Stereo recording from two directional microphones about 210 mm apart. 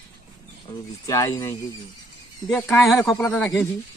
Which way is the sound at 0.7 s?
20° left (ahead or behind).